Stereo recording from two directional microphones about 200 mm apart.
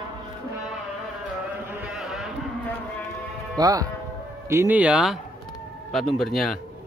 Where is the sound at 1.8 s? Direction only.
Centre (ahead or behind).